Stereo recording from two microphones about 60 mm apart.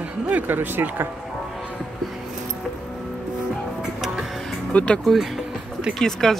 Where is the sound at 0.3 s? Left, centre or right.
Right.